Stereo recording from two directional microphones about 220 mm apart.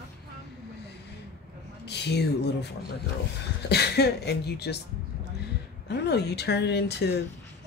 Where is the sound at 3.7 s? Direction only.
50° left (ahead or behind).